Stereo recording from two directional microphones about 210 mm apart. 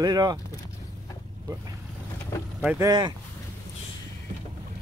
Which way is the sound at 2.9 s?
20° right (ahead or behind).